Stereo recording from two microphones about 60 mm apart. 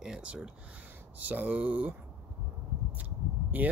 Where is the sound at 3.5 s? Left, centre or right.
Right.